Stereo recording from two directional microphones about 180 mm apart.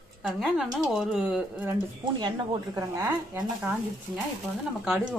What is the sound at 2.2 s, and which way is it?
Speech, 20° right (ahead or behind).